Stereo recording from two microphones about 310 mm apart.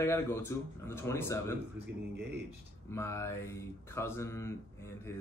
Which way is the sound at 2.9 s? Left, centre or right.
Centre.